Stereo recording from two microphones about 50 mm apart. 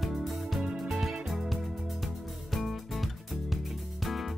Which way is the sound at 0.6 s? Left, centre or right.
Centre.